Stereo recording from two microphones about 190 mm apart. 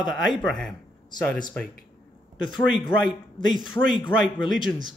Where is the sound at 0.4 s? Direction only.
Centre (ahead or behind).